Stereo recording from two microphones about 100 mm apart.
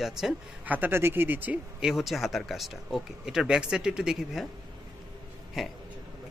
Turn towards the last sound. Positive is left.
turn(degrees=-5)  # may be behind; listen again after turning